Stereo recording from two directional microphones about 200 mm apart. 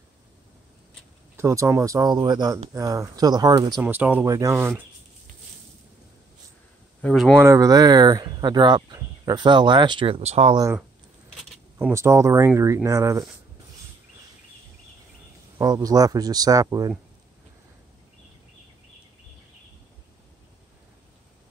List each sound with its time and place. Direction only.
1.3 s speech: 15° right (ahead or behind)
3.8 s speech: 10° right (ahead or behind)
7.0 s speech: 5° left (ahead or behind)
7.3 s speech: 15° right (ahead or behind); by 10.5 s 30° right (ahead or behind)
10.5 s speech: 15° right (ahead or behind)
11.9 s speech: 15° right (ahead or behind)
15.5 s speech: 20° right (ahead or behind)